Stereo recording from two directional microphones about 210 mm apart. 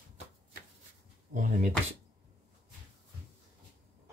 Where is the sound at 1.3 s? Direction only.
35° right (ahead or behind).